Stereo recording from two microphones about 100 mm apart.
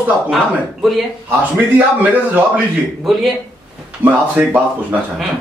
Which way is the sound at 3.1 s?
Centre (ahead or behind).